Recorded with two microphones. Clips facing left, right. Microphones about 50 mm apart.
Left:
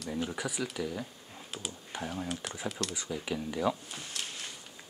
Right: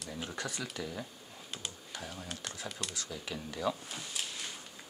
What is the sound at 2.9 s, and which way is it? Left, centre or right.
Speech, centre.